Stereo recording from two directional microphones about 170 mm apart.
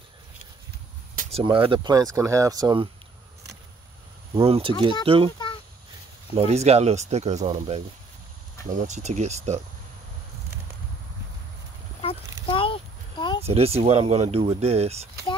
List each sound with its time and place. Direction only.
1.3 s speech: 30° right (ahead or behind)
4.4 s speech: 30° right (ahead or behind)
6.3 s speech: 40° right (ahead or behind)
12.4 s a sound: 30° left (ahead or behind)
13.5 s speech: 35° right (ahead or behind)